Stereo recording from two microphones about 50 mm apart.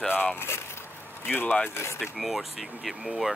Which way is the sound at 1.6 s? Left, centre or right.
Left.